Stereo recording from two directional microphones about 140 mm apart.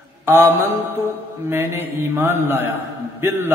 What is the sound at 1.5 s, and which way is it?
A man's voice, 15° right (ahead or behind).